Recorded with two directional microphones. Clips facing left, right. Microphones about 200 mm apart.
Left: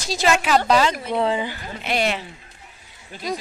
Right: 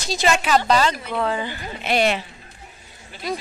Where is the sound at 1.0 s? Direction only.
25° left (ahead or behind).